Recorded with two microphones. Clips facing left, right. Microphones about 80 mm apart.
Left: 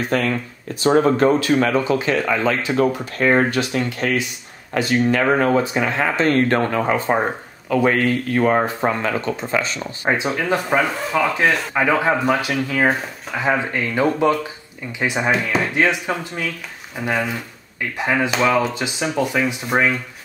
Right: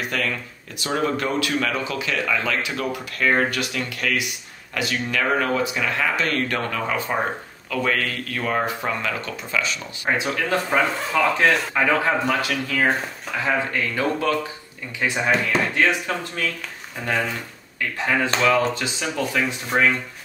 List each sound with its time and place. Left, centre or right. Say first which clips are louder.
0.1 s speech: left 6 dB; left
10.0 s speech: left 3 dB; left; by 11.6 s centre
11.7 s speech: left 2 dB; centre